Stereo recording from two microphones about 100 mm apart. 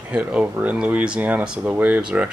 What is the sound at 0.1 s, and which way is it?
Speech, 10° right (ahead or behind).